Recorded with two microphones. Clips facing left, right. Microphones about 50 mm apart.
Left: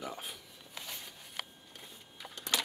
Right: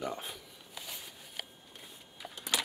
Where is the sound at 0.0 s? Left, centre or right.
Centre.